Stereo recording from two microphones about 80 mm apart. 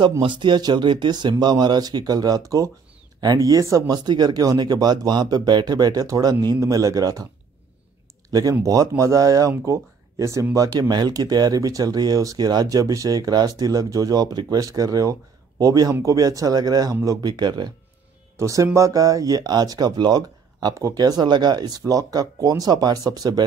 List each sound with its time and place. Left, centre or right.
0.2 s speech: right
3.9 s speech: right
8.3 s speech: right
18.4 s speech: right
20.7 s speech: right